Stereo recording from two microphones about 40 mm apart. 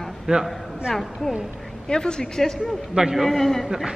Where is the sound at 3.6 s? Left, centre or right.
Centre.